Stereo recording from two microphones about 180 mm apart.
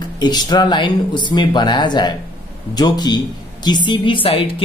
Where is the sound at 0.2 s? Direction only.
25° left (ahead or behind).